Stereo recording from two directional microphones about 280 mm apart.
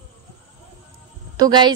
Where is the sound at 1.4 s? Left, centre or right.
Centre.